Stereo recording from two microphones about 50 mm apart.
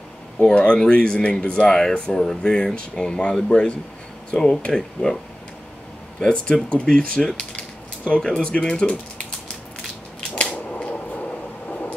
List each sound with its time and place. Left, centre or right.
0.4 s speech: left
1.7 s speech: centre
6.2 s speech: centre
10.8 s a sound: left